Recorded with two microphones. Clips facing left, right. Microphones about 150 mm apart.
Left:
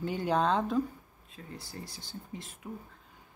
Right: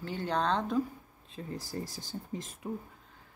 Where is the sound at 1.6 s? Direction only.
40° right (ahead or behind).